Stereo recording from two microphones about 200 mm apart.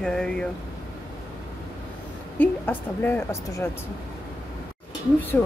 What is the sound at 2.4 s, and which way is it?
A woman's voice, 10° left (ahead or behind).